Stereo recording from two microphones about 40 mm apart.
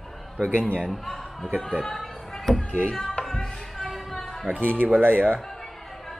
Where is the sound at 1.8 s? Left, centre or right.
Centre.